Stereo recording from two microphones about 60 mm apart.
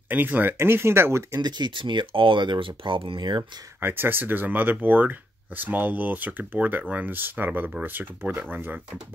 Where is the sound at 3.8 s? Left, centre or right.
Right.